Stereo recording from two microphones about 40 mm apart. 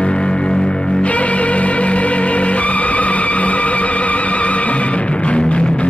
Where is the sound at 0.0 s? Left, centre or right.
Left.